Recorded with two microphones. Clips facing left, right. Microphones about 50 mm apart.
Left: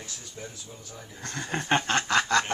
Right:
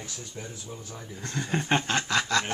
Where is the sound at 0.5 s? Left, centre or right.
Right.